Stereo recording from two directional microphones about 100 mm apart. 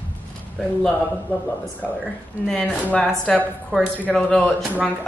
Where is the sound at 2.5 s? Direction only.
5° left (ahead or behind).